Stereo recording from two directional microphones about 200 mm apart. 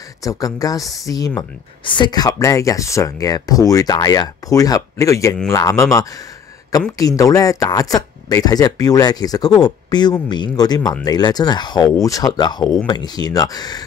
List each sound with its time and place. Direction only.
0.2 s speech: 15° left (ahead or behind)